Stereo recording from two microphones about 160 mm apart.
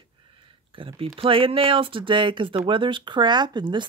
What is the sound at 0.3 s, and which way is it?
Speech, 30° right (ahead or behind).